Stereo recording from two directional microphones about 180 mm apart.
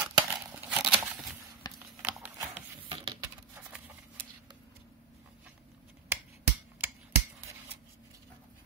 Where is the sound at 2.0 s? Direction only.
10° right (ahead or behind).